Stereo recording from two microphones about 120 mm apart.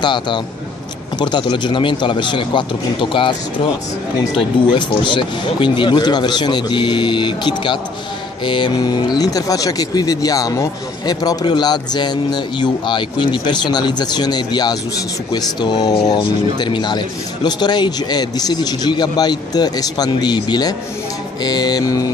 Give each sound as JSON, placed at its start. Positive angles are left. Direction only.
{"t": 0.0, "sound": "speech", "side_deg": 40}
{"t": 4.4, "sound": "speech", "side_deg": 40}